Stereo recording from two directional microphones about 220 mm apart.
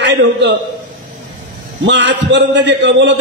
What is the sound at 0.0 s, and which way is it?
Speech, 50° right (ahead or behind).